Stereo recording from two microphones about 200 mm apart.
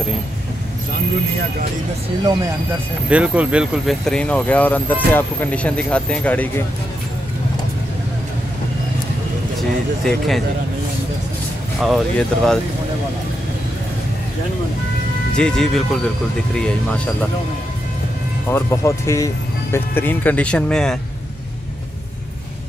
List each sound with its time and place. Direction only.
3.1 s speech: 5° right (ahead or behind)
9.6 s speech: centre (ahead or behind)
11.8 s speech: centre (ahead or behind)
15.3 s speech: 5° left (ahead or behind)
18.5 s speech: 15° left (ahead or behind)